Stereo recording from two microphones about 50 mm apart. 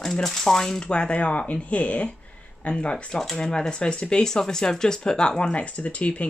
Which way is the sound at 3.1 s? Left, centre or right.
Centre.